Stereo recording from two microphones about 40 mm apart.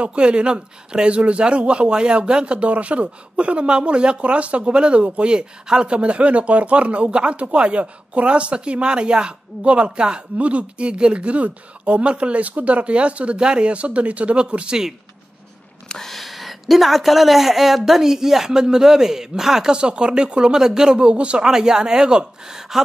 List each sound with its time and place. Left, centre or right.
0.0 s a man's voice: right
10.3 s a woman's voice: right
15.9 s speech: centre
19.7 s a man's voice: right
21.5 s speech: centre